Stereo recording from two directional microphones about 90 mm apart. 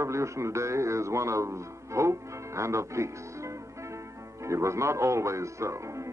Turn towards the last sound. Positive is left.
turn(degrees=-35)  # may be behind; listen again after turning